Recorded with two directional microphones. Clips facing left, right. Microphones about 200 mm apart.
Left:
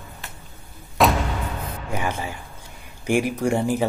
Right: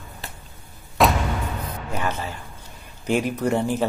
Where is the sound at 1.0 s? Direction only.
Centre (ahead or behind).